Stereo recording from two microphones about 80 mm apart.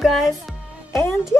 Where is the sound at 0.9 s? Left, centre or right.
Left.